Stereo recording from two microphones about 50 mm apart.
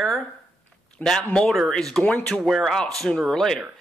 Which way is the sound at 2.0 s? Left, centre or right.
Left.